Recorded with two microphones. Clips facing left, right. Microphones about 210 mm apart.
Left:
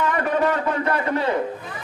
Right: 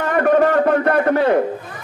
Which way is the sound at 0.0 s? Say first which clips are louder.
Right 6 dB; 55° right (ahead or behind).